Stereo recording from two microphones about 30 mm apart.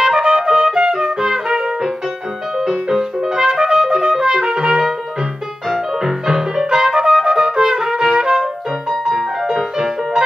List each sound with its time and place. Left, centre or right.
0.0 s music: right
0.8 s music: centre
2.6 s music: centre
4.4 s music: centre
5.7 s music: centre
9.0 s music: centre